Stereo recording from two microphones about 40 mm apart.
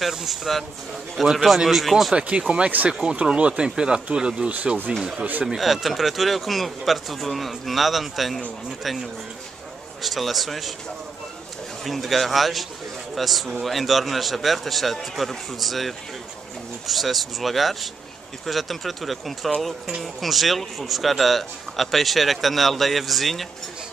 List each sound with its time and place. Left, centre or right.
0.1 s speech: centre
2.1 s speech: right
5.6 s speech: centre
10.0 s speech: centre
11.8 s speech: centre